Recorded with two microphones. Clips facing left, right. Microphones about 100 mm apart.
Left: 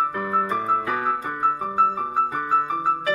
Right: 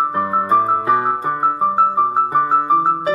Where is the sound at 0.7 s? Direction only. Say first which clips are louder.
Right 6 dB; 15° right (ahead or behind).